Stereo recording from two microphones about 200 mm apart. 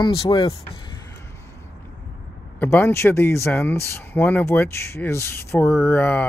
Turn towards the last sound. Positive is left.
turn(degrees=10)  # may be behind; listen again after turning